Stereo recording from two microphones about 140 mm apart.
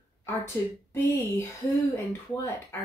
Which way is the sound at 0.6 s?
25° left (ahead or behind).